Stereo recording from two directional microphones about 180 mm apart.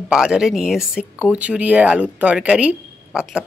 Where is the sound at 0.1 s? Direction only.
5° right (ahead or behind).